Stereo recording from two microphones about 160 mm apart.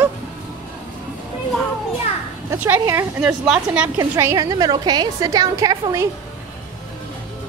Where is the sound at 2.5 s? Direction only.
15° right (ahead or behind).